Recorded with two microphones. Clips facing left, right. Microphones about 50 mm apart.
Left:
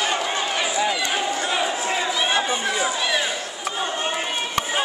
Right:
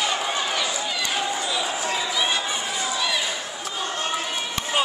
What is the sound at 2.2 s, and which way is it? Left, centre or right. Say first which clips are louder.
Chatter: left 4 dB; left.